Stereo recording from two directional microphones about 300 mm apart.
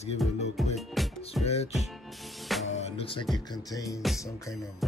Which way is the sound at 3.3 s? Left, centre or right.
Centre.